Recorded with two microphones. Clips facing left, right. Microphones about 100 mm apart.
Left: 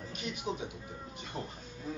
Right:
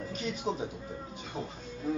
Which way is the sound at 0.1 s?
35° right (ahead or behind).